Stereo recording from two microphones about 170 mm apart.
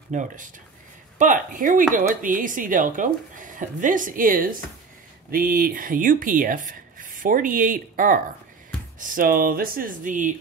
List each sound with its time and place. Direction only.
0.1 s speech: 45° right (ahead or behind)